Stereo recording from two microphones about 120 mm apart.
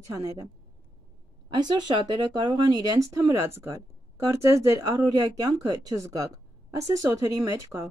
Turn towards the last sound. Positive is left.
turn(degrees=-25)  # may be behind; listen again after turning